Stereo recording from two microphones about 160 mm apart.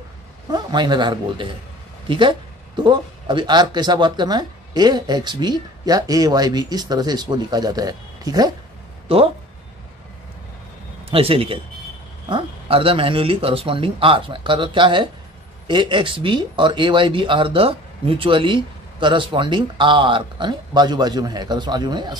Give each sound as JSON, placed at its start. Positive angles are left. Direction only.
{"t": 0.5, "sound": "speech", "side_deg": -25}
{"t": 9.1, "sound": "speech", "side_deg": -35}
{"t": 11.1, "sound": "speech", "side_deg": -35}